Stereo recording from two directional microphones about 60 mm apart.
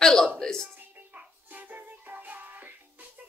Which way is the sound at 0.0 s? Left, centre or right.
Centre.